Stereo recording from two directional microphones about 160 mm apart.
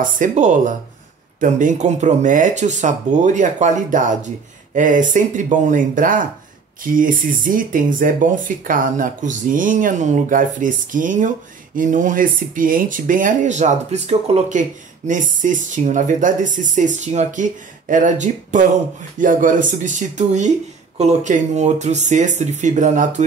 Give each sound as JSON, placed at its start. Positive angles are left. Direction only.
{"t": 0.2, "sound": "speech", "side_deg": -50}